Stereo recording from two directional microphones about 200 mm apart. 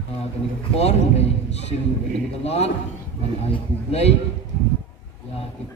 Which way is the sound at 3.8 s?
30° left (ahead or behind).